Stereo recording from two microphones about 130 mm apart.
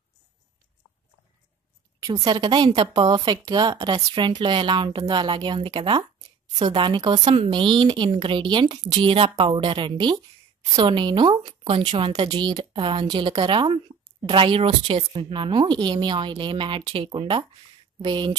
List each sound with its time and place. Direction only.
2.2 s a woman's voice: 35° right (ahead or behind)